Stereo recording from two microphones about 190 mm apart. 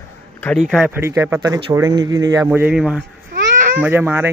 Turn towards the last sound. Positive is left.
turn(degrees=-10)  # may be behind; listen again after turning